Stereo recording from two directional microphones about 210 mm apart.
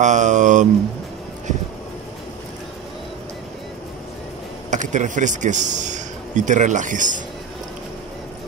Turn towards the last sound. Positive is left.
turn(degrees=-35)  # may be behind; listen again after turning